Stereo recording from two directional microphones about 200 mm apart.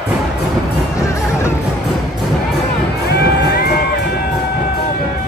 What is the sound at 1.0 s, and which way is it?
Music, 15° left (ahead or behind).